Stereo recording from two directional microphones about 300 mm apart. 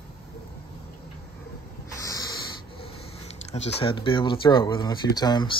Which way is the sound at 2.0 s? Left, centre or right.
Centre.